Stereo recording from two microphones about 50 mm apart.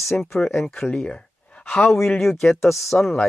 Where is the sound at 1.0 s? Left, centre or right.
Left.